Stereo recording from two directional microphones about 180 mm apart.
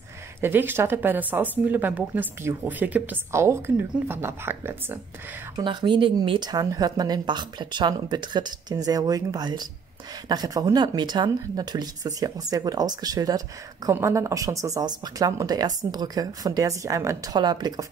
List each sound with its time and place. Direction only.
0.4 s speech: 10° right (ahead or behind)
5.6 s speech: 25° right (ahead or behind)